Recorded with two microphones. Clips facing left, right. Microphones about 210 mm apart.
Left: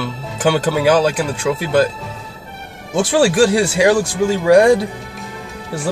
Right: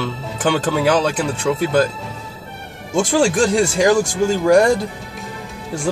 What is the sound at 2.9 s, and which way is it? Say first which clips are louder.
Speech: left 1 dB; 5° left (ahead or behind).